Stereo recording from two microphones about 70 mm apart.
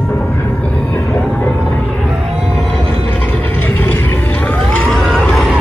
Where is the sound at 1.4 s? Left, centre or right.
Left.